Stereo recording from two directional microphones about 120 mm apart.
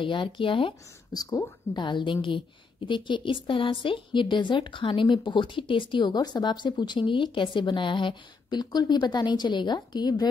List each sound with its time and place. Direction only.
0.0 s speech: 45° left (ahead or behind)
1.1 s speech: 30° left (ahead or behind)